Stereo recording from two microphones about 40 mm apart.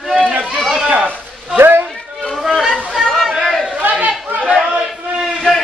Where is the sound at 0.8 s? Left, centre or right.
Right.